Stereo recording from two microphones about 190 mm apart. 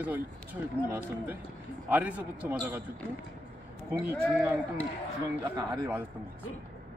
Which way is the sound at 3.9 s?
10° right (ahead or behind).